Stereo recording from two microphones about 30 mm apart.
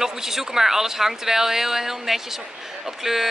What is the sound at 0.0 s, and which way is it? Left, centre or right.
Speech, centre.